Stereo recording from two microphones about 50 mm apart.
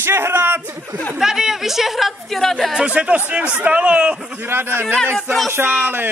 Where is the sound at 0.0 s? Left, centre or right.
Right.